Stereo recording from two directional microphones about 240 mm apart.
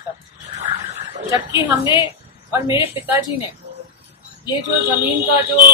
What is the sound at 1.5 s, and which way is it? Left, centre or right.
Speech, centre.